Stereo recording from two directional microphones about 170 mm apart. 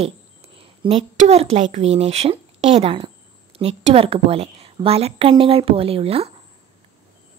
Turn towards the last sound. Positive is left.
turn(degrees=-35)  # may be behind; listen again after turning